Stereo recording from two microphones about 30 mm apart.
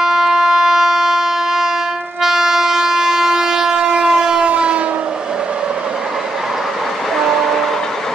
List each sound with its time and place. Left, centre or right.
0.0 s siren: centre
2.2 s train: centre
4.5 s train: right
7.2 s train: centre